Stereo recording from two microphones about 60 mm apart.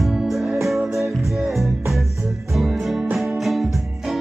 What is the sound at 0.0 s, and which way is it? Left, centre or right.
Music, centre.